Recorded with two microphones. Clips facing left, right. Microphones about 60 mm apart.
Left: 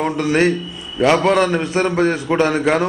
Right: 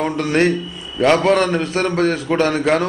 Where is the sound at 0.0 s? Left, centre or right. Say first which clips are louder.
Left 1 dB; centre.